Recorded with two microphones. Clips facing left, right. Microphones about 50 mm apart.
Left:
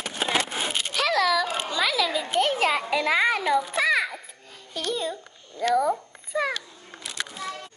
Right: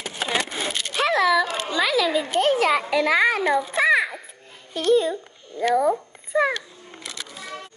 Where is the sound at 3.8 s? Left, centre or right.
Right.